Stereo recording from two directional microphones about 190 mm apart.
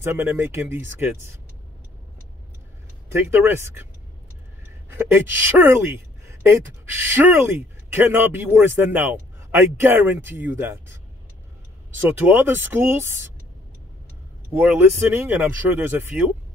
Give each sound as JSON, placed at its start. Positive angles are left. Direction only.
{"t": 0.0, "sound": "speech", "side_deg": -10}
{"t": 3.1, "sound": "speech", "side_deg": -10}
{"t": 4.9, "sound": "speech", "side_deg": -10}
{"t": 12.0, "sound": "speech", "side_deg": -10}
{"t": 14.5, "sound": "speech", "side_deg": -5}